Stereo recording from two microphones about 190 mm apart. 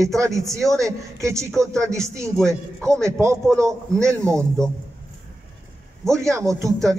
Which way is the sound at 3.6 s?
15° right (ahead or behind).